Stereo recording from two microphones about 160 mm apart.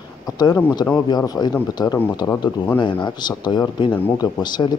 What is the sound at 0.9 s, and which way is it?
Speech, 25° left (ahead or behind).